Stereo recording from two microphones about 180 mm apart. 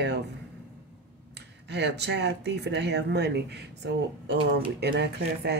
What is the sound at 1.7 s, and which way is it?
Speech, 70° right (ahead or behind).